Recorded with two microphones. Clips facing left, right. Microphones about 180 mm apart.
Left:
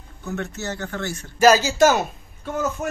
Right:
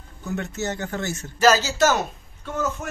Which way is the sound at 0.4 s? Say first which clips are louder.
Right 1 dB; 20° right (ahead or behind).